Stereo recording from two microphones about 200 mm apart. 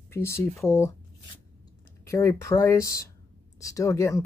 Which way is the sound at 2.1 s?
15° left (ahead or behind).